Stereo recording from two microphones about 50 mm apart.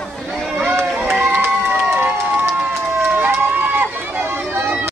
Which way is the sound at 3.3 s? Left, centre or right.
Right.